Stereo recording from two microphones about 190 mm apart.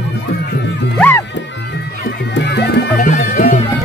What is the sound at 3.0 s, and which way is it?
Music, 45° left (ahead or behind).